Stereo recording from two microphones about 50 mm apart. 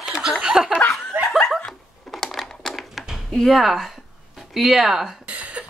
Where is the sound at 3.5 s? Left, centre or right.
Centre.